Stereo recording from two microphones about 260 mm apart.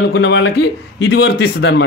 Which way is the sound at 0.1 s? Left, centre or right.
Left.